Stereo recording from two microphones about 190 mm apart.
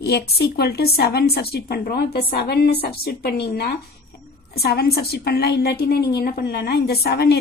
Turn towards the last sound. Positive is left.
turn(degrees=55)  # may be behind; listen again after turning